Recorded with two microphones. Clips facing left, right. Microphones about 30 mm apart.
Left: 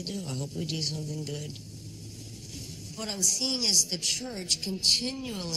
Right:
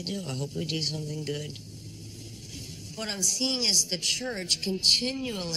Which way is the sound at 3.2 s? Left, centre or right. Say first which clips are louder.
Right 1 dB; centre.